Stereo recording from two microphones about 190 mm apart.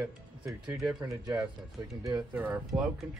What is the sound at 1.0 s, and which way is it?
Speech, 15° right (ahead or behind).